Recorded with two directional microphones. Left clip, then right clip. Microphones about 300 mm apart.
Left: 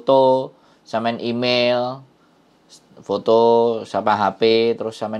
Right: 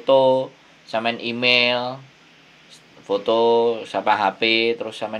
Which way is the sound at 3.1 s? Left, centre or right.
Left.